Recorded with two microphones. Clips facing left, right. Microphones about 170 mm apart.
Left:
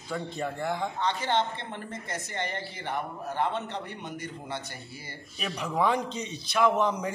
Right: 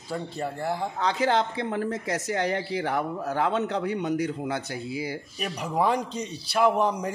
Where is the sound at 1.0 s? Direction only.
90° right.